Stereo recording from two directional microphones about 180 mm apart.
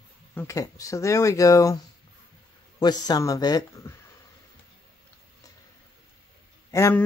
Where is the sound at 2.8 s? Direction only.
20° left (ahead or behind).